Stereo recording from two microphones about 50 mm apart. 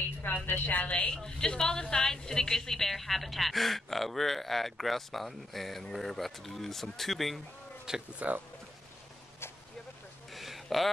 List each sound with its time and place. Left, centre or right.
0.2 s a woman's voice: left
0.8 s a woman's voice: left
1.2 s a woman's voice: centre
7.9 s speech: centre
10.3 s a sound: centre